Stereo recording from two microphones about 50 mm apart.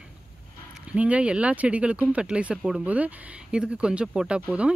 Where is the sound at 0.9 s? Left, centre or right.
Right.